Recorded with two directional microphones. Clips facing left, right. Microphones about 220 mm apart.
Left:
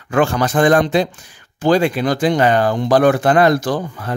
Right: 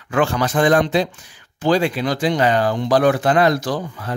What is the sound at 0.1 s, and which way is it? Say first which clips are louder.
Speech: left 3 dB; 45° left (ahead or behind).